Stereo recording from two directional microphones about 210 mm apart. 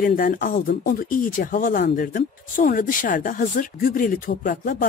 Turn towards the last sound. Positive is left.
turn(degrees=40)  # may be behind; listen again after turning